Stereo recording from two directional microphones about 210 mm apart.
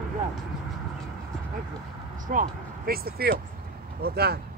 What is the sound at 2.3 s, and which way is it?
Speech, 40° right (ahead or behind).